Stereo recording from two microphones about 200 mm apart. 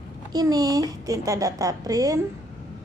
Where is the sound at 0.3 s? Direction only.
20° right (ahead or behind).